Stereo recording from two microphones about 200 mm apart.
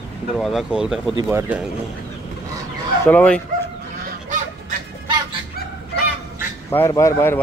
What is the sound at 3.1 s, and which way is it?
Speech, 5° left (ahead or behind).